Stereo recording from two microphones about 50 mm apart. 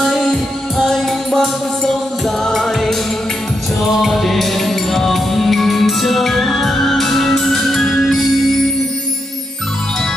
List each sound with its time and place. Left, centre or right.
0.0 s music: centre